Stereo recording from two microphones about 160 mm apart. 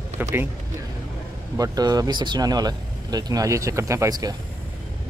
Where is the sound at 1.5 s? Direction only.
20° right (ahead or behind).